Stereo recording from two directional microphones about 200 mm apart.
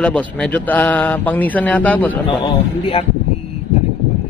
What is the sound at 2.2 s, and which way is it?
Speech, 30° left (ahead or behind).